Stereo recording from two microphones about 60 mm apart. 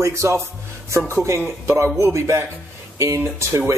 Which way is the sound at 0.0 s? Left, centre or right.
Right.